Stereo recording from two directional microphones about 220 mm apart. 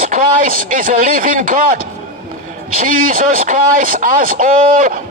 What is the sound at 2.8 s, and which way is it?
Speech, 40° right (ahead or behind).